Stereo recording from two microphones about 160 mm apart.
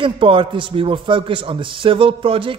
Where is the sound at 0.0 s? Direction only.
30° right (ahead or behind).